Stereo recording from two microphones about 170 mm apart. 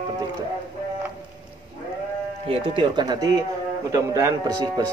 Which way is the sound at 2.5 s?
30° right (ahead or behind).